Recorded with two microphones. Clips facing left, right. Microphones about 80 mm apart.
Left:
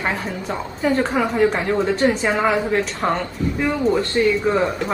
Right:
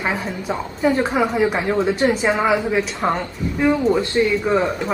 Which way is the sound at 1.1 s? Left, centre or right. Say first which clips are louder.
Even; centre.